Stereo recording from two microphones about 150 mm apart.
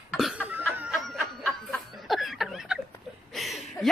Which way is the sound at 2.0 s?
Centre (ahead or behind).